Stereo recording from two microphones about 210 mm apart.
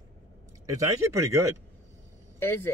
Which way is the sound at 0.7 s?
15° right (ahead or behind).